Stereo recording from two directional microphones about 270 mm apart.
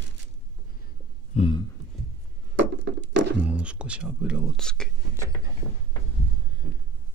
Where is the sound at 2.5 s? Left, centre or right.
Right.